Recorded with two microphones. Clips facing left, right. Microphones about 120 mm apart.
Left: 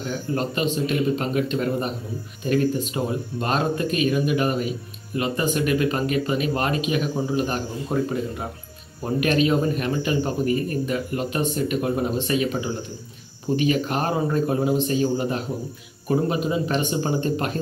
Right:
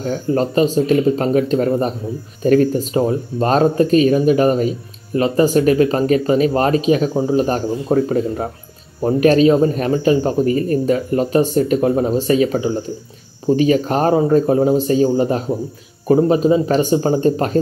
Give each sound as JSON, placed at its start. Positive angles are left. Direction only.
{"t": 0.0, "sound": "speech", "side_deg": -35}